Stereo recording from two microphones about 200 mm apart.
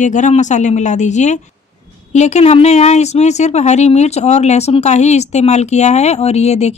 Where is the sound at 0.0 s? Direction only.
40° left (ahead or behind).